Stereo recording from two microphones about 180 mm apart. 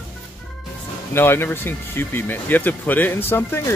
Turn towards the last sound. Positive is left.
turn(degrees=15)  # may be behind; listen again after turning